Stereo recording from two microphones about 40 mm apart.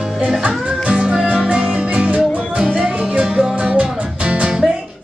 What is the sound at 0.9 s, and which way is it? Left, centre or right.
Music, right.